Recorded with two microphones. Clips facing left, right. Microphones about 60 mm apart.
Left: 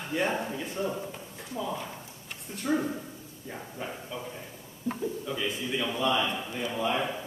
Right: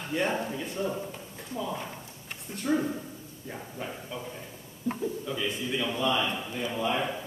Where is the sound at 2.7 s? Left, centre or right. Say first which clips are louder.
Right 1 dB; centre.